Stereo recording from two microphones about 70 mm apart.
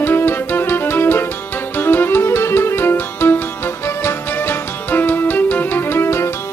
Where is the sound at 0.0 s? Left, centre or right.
Left.